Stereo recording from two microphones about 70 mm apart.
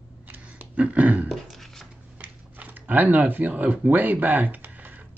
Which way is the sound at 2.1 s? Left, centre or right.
Right.